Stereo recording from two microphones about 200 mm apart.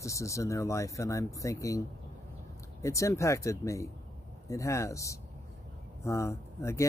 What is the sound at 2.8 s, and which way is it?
Speech, 15° left (ahead or behind).